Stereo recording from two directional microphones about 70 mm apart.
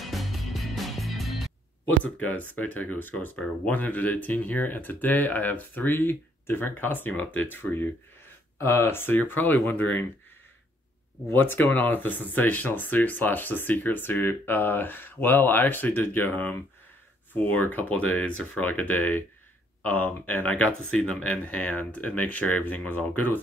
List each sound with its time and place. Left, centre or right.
0.0 s music: centre
2.0 s speech: left
8.5 s speech: left
11.2 s speech: left